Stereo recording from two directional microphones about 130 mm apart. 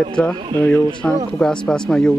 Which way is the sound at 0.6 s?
20° left (ahead or behind).